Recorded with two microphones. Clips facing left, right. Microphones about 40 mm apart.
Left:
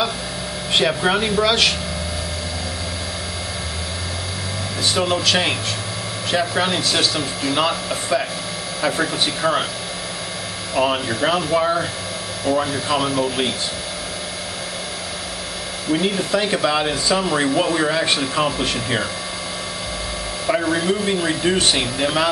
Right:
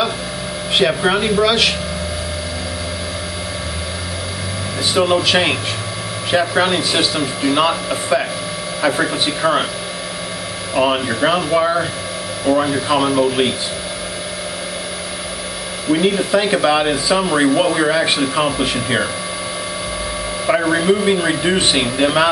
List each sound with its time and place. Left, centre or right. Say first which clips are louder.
0.7 s speech: right 3 dB; centre
4.9 s speech: right 5 dB; centre
10.7 s speech: right 3 dB; centre
15.9 s speech: right 5 dB; centre
20.4 s speech: right 4 dB; centre